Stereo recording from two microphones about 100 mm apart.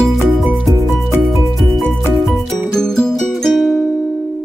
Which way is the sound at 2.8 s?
5° left (ahead or behind).